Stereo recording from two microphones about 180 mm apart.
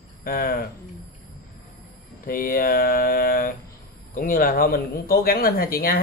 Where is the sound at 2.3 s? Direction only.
50° left (ahead or behind).